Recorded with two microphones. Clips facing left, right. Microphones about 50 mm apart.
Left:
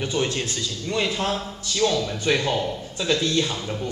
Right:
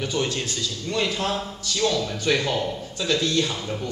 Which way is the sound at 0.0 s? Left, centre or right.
Centre.